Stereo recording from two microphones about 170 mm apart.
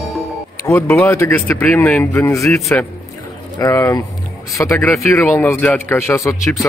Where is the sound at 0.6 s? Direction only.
15° left (ahead or behind).